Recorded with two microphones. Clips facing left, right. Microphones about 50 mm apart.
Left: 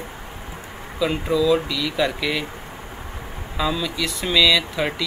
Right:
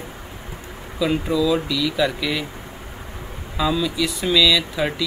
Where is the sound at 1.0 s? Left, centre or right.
Centre.